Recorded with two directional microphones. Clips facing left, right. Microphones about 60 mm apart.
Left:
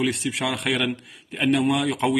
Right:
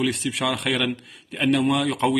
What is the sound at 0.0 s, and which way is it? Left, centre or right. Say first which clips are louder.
Speech: right 1 dB; centre.